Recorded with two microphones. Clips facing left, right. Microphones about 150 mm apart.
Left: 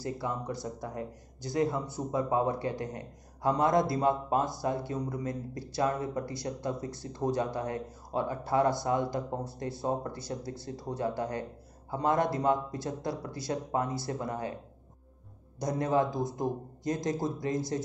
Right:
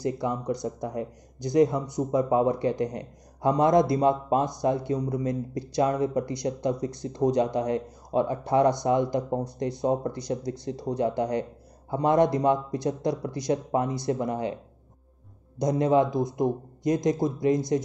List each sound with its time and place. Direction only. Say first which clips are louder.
0.0 s a man's voice: right 6 dB; 20° right (ahead or behind)
15.6 s a man's voice: right 6 dB; 20° right (ahead or behind)